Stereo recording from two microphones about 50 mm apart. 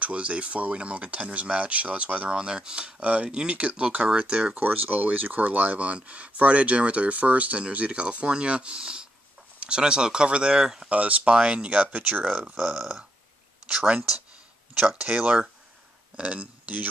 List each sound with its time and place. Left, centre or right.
0.0 s speech: right
4.6 s speech: right; by 10.9 s centre
10.9 s speech: right
12.5 s speech: centre
13.7 s speech: centre
15.1 s speech: right